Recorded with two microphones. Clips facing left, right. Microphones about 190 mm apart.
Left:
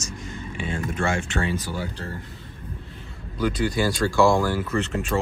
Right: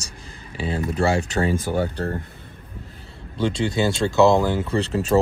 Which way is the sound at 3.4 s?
25° right (ahead or behind).